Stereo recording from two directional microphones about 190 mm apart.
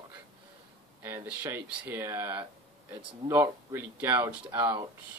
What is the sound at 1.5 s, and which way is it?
Speech, 10° right (ahead or behind).